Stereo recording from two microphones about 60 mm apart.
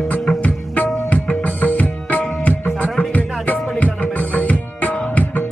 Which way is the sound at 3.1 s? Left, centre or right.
Left.